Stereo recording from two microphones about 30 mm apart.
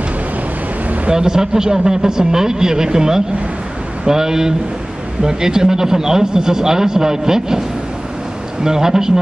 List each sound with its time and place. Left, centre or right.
1.1 s a man's voice: right
8.6 s a man's voice: centre